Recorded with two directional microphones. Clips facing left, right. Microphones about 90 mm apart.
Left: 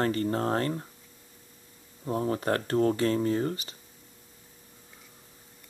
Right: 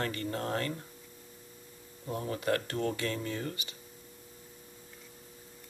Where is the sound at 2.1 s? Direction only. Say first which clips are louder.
Left 4 dB; 40° left (ahead or behind).